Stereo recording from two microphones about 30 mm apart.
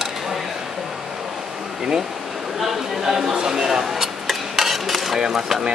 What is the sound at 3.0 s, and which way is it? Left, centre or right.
Speech, centre.